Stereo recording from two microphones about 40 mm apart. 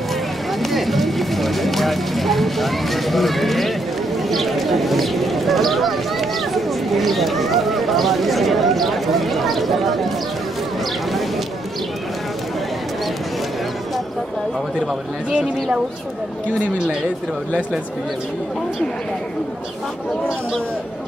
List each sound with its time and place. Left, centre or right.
0.6 s speech: centre
15.3 s speech: right